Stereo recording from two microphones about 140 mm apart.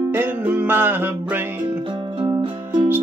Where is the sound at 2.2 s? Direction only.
35° right (ahead or behind).